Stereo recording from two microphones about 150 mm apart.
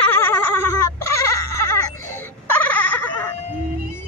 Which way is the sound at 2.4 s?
10° left (ahead or behind).